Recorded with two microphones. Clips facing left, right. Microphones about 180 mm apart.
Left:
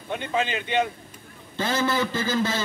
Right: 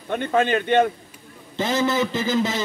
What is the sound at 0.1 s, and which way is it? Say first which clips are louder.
Speech: right 6 dB; 55° right (ahead or behind).